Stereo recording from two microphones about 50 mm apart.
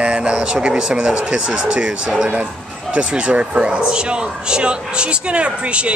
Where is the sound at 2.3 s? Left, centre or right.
Right.